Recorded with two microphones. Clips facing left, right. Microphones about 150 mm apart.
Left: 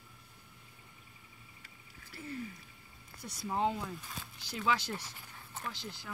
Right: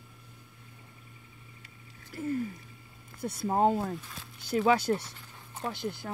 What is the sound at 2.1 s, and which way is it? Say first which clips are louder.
Speech: right 10 dB; 45° right (ahead or behind).